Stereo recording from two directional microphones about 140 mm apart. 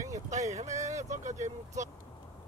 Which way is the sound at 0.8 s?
25° right (ahead or behind).